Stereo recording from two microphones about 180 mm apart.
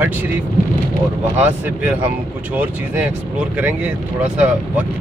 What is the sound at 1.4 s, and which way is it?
Speech, 10° right (ahead or behind).